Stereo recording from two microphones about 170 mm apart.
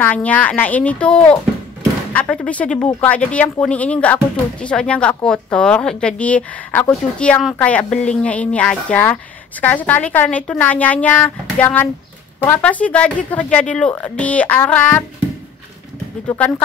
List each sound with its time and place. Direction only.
0.0 s speech: 10° left (ahead or behind)
16.3 s speech: 10° left (ahead or behind)